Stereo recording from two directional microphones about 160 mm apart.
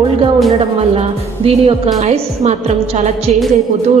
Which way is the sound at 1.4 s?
40° right (ahead or behind).